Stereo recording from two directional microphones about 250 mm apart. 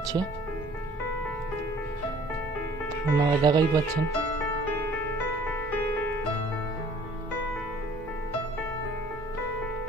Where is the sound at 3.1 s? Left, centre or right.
Centre.